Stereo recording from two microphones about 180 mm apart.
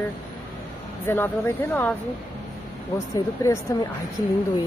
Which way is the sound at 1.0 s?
10° left (ahead or behind).